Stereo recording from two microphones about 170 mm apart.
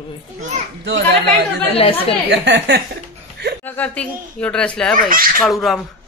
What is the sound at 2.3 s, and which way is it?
Speech, 85° right.